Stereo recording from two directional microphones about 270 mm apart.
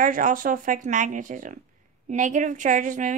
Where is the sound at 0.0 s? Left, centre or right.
Right.